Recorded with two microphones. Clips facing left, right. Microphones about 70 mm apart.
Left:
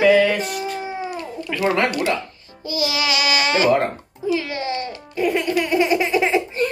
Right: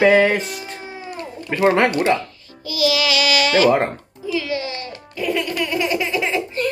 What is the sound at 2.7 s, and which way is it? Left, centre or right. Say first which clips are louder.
Speech: right 3 dB; left.